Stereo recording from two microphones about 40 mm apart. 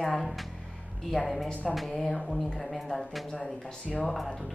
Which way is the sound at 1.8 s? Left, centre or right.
Centre.